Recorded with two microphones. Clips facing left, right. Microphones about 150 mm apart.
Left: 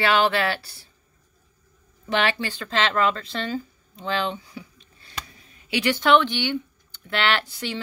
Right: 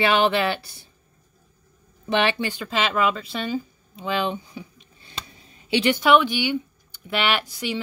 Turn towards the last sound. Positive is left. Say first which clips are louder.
# right 1 dB
turn(degrees=-10)  # may be behind; listen again after turning